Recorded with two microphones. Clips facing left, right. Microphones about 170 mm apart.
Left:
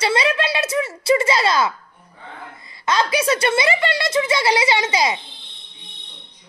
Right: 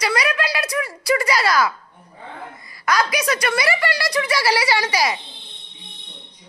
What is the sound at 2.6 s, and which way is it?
A woman's voice, 25° left (ahead or behind).